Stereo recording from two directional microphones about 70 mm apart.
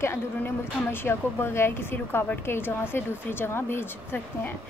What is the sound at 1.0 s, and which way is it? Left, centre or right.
A woman's voice, left.